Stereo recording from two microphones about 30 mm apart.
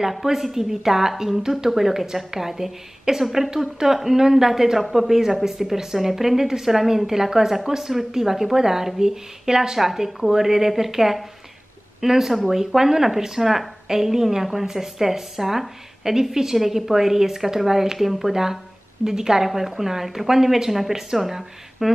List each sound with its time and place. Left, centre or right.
0.1 s a woman's voice: centre